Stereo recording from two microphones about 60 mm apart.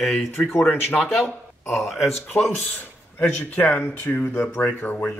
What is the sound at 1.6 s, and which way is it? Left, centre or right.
Speech, centre.